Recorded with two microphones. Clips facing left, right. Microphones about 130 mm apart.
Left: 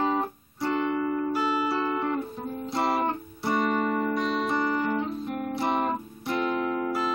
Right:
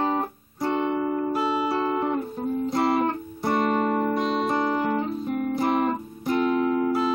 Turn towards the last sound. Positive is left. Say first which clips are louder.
# right 5 dB
turn(degrees=-5)  # may be behind; listen again after turning